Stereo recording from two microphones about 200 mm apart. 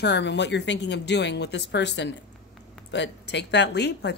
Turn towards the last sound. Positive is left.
turn(degrees=60)  # may be behind; listen again after turning